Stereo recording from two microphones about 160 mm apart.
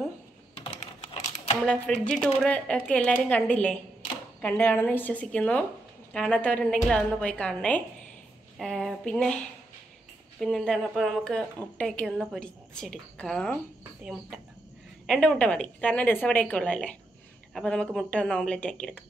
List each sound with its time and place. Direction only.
0.6 s typing: 40° left (ahead or behind)
1.7 s a woman's voice: 5° left (ahead or behind)
10.4 s a woman's voice: centre (ahead or behind)
15.0 s a woman's voice: 5° left (ahead or behind)